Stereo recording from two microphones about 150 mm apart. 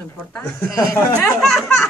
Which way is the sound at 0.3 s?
15° left (ahead or behind).